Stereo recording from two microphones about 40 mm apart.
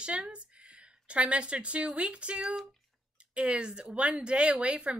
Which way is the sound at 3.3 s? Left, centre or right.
Right.